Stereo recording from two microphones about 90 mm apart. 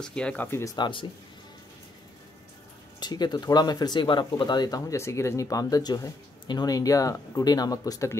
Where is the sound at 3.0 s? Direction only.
50° left (ahead or behind).